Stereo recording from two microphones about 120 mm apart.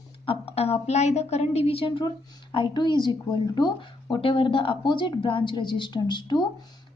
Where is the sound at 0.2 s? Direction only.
50° left (ahead or behind).